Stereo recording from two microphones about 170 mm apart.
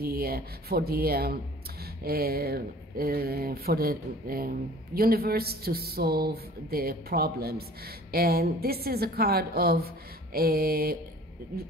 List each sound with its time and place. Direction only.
0.0 s speech: 65° right (ahead or behind)